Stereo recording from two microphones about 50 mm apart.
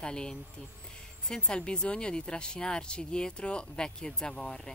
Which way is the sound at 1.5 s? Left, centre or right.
Centre.